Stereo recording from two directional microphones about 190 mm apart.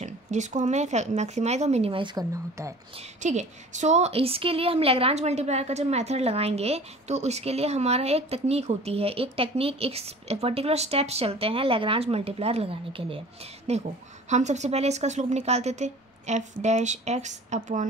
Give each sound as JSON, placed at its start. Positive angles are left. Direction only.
{"t": 0.0, "sound": "a woman's voice", "side_deg": -40}
{"t": 3.2, "sound": "a woman's voice", "side_deg": -40}